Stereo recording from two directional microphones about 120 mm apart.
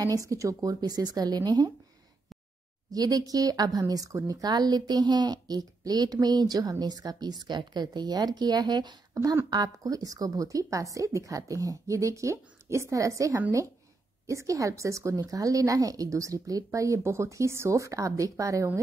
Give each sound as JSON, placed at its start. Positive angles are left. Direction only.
{"t": 0.0, "sound": "a woman's voice", "side_deg": -30}
{"t": 2.9, "sound": "a woman's voice", "side_deg": -30}